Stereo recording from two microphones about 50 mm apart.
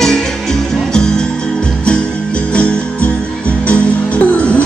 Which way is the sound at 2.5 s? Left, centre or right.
Left.